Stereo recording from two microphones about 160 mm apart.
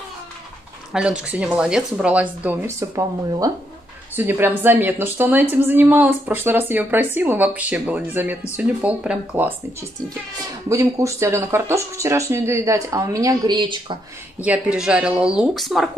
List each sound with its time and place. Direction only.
0.9 s speech: 5° right (ahead or behind)
10.7 s speech: 20° right (ahead or behind)
14.4 s speech: 5° right (ahead or behind)